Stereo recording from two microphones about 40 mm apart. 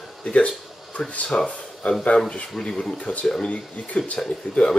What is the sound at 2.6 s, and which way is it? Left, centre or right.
Speech, left.